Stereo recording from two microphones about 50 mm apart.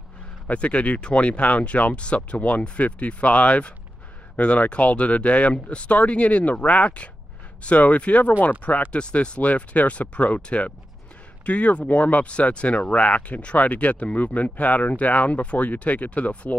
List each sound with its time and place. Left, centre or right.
0.5 s speech: left
8.9 s speech: left